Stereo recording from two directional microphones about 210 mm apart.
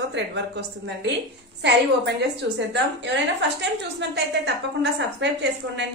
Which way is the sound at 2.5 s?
55° right (ahead or behind).